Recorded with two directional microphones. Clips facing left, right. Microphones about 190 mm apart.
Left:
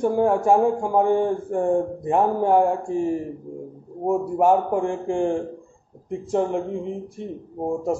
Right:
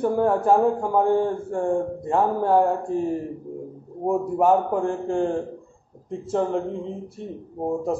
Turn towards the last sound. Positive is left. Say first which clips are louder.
# left 1 dB
turn(degrees=10)  # may be behind; listen again after turning